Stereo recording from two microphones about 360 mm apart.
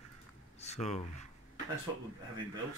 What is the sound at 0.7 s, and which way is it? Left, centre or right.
Speech, centre.